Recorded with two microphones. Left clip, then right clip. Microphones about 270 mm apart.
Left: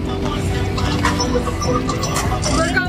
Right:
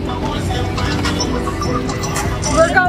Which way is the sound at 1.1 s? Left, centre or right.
Left.